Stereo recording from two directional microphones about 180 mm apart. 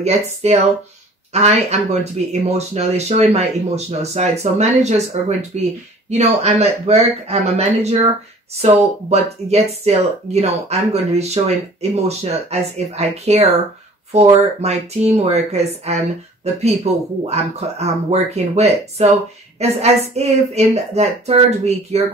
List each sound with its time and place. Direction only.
0.0 s speech: 35° right (ahead or behind)